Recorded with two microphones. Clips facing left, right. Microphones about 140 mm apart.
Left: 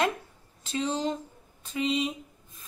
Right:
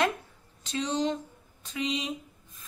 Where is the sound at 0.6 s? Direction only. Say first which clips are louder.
Even; 5° left (ahead or behind).